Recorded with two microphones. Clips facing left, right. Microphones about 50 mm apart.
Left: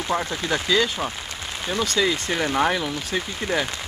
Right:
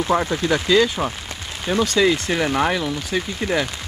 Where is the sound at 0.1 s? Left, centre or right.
Centre.